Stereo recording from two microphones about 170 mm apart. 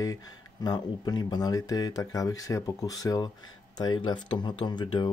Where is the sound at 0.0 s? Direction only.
20° left (ahead or behind).